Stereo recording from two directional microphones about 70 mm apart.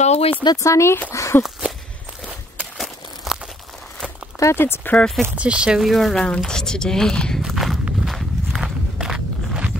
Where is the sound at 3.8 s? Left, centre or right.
Centre.